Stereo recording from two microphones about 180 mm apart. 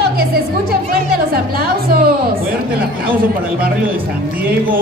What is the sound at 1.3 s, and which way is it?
Music, 55° right (ahead or behind).